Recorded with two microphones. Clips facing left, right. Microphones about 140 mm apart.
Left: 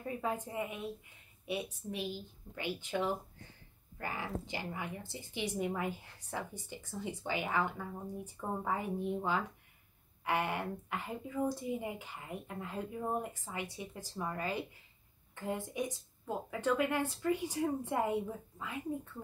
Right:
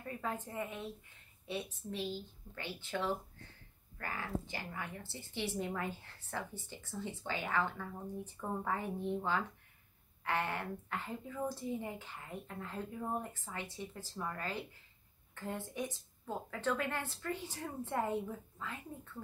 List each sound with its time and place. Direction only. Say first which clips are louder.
0.1 s speech: left 3 dB; 15° left (ahead or behind)